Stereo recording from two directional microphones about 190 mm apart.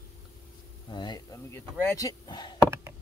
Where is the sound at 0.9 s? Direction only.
20° left (ahead or behind).